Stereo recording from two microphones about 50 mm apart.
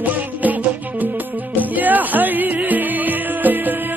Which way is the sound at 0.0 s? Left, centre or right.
Right.